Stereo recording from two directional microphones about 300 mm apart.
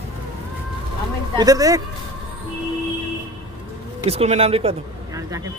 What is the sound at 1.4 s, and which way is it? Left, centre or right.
Speech, centre.